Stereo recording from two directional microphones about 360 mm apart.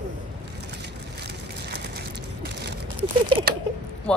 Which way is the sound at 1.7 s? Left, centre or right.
Right.